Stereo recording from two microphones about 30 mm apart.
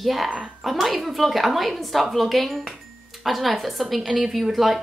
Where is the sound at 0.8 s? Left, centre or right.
Centre.